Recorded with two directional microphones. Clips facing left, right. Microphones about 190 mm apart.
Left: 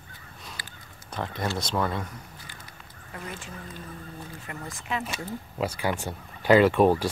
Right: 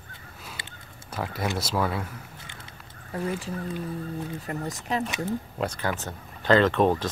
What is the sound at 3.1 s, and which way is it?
Speech, 35° right (ahead or behind).